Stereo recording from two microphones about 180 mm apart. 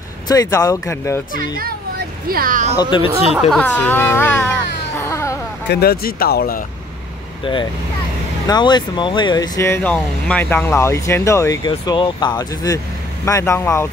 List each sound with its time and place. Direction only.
0.3 s speech: 20° left (ahead or behind)
1.6 s a sound: 55° right (ahead or behind)
2.8 s speech: 25° left (ahead or behind)
3.4 s speech: 5° left (ahead or behind)
4.9 s music: 15° left (ahead or behind)
5.7 s speech: 60° left (ahead or behind)
7.5 s speech: 30° left (ahead or behind)